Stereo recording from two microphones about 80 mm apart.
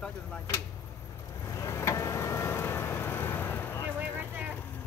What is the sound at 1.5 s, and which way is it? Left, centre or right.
Vehicle, left.